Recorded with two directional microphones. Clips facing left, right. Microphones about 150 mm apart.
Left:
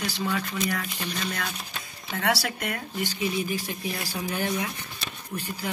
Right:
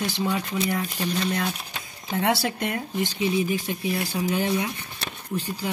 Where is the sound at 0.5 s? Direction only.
25° right (ahead or behind).